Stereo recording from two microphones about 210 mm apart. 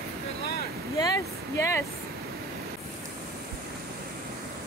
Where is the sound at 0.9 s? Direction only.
20° left (ahead or behind).